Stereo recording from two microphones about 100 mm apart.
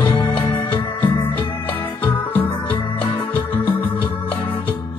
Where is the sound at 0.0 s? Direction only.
60° left (ahead or behind).